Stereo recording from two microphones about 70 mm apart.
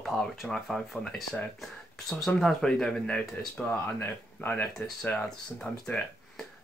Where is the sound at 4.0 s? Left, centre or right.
Left.